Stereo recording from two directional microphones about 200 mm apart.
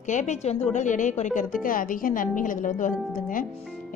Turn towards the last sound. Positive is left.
turn(degrees=40)  # may be behind; listen again after turning